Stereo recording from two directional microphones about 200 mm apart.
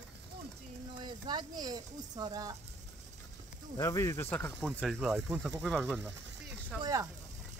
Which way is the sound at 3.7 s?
15° left (ahead or behind).